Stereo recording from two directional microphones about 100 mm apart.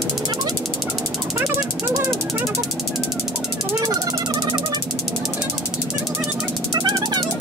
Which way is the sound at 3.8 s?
40° right (ahead or behind).